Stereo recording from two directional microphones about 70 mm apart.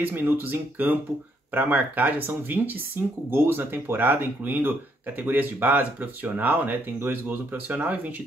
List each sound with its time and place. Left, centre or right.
0.0 s speech: right